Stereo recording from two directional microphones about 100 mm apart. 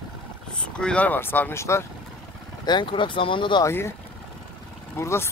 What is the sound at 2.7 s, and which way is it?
Speech, 55° left (ahead or behind).